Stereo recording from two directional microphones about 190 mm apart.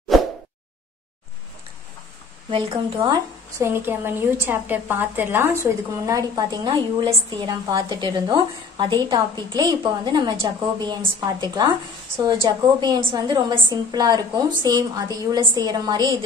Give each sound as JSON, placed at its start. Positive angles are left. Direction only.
{"t": 2.5, "sound": "a woman's voice", "side_deg": -25}
{"t": 3.6, "sound": "a woman's voice", "side_deg": -10}